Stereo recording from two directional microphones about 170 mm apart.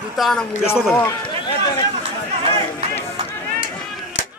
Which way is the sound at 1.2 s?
25° left (ahead or behind).